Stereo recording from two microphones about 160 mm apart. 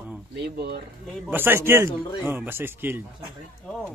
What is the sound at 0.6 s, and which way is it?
Speech, 80° right.